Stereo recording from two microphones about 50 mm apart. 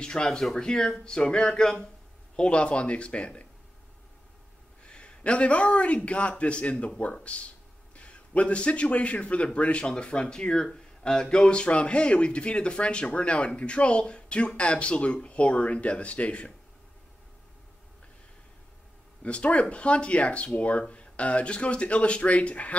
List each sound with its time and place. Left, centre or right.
0.0 s a man's voice: centre
4.8 s a man's voice: left
19.2 s a man's voice: left